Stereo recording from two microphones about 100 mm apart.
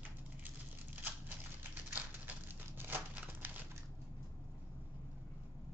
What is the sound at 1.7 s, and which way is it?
Crumpling, 20° right (ahead or behind).